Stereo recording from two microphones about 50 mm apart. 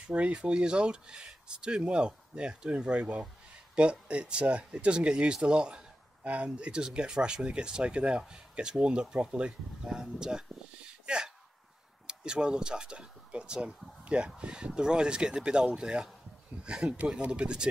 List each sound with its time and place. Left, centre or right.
0.0 s speech: right
6.2 s speech: right
11.1 s a sound: centre
12.1 s speech: centre